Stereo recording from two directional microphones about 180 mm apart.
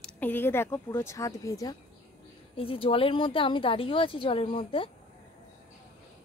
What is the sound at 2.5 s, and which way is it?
Speech, 30° left (ahead or behind).